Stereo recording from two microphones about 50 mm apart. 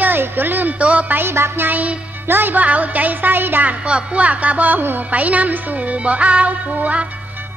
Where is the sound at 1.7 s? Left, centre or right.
Right.